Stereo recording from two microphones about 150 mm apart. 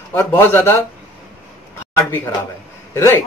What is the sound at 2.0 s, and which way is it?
A man's voice, 20° left (ahead or behind).